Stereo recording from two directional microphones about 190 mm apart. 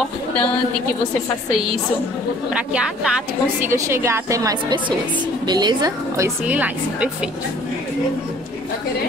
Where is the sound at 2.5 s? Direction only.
5° right (ahead or behind).